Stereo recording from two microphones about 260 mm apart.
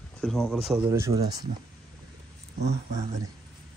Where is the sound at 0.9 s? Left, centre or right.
Centre.